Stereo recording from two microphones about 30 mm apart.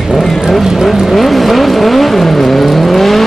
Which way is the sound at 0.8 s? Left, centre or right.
Centre.